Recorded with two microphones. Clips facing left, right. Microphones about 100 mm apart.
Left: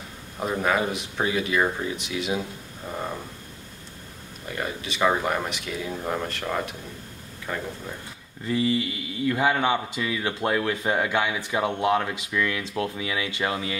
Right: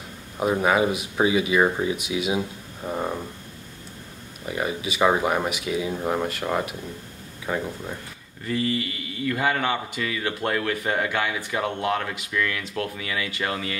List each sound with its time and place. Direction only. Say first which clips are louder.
0.4 s speech: right 4 dB; 5° right (ahead or behind)
4.5 s speech: right 4 dB; 5° right (ahead or behind)
8.5 s a man's voice: left 2 dB; 15° left (ahead or behind)